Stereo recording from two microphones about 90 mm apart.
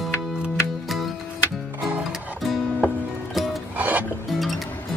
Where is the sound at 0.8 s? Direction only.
Centre (ahead or behind).